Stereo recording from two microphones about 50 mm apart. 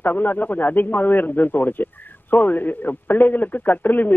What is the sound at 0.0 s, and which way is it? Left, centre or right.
A man's voice, left.